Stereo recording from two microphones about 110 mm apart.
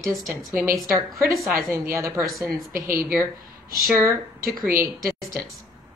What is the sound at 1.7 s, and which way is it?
Speech, 25° right (ahead or behind).